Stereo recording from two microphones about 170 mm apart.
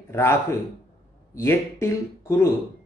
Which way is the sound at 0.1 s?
15° left (ahead or behind).